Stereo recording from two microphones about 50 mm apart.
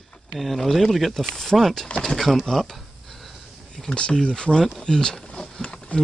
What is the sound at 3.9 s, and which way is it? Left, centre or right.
Speech, centre.